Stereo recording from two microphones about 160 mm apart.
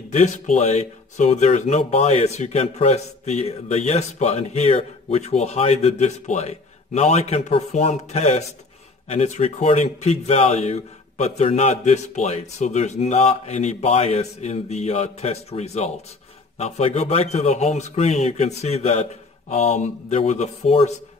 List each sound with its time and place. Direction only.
0.1 s speech: 50° left (ahead or behind)